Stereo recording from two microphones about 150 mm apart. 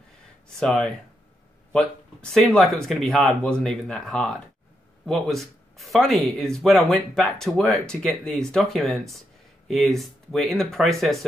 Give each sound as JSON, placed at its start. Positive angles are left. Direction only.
{"t": 0.6, "sound": "speech", "side_deg": 5}
{"t": 2.3, "sound": "speech", "side_deg": 0}